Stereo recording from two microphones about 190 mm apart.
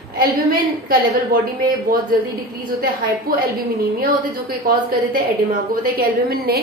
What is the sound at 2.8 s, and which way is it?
Speech, 50° right (ahead or behind).